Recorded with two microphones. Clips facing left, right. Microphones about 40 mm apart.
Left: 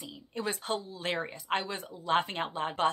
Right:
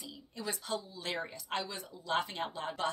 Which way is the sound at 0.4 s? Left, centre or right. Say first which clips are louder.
Left 5 dB; left.